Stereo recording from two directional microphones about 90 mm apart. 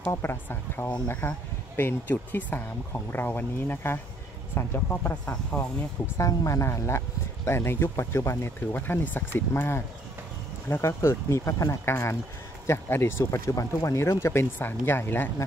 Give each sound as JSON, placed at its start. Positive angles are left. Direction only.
{"t": 0.1, "sound": "speech", "side_deg": 25}
{"t": 6.1, "sound": "speech", "side_deg": 35}
{"t": 13.2, "sound": "speech", "side_deg": 40}